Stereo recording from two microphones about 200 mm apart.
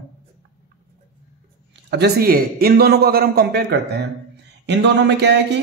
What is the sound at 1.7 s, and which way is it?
A man's voice, 55° right (ahead or behind).